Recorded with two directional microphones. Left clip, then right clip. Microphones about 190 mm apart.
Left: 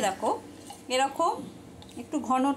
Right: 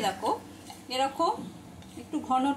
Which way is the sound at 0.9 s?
30° left (ahead or behind).